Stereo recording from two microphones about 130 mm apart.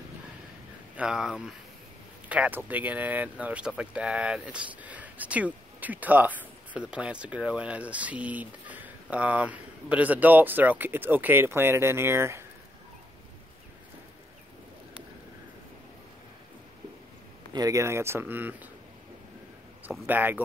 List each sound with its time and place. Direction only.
0.9 s speech: 5° right (ahead or behind)
17.5 s speech: 30° right (ahead or behind)
19.9 s speech: 15° right (ahead or behind)